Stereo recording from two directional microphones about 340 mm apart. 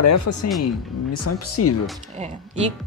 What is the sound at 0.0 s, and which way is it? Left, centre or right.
Speech, left.